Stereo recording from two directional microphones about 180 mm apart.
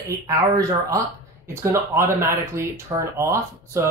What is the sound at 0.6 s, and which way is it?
Speech, 15° right (ahead or behind).